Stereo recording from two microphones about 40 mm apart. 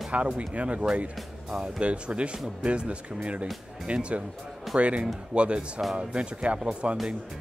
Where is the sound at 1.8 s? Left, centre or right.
Right.